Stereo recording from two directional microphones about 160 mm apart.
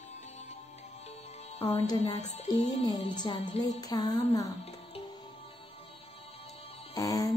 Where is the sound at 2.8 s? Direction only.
25° left (ahead or behind).